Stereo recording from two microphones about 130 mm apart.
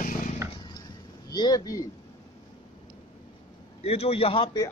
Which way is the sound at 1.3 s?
30° left (ahead or behind).